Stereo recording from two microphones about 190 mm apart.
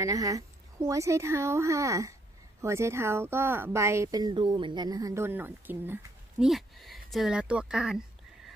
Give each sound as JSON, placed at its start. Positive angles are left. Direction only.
{"t": 0.0, "sound": "speech", "side_deg": -20}